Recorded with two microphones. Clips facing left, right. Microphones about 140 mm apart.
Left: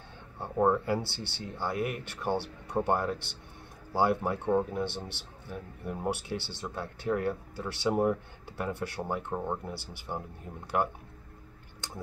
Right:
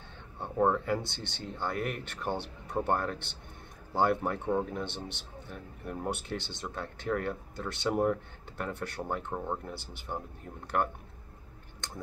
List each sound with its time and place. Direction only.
0.4 s speech: 10° left (ahead or behind)